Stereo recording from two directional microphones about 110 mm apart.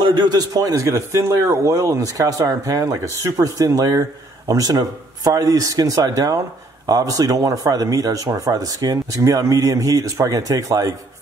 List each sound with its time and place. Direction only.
0.0 s speech: 40° right (ahead or behind)